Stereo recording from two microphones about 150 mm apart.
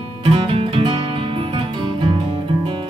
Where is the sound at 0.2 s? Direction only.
30° right (ahead or behind).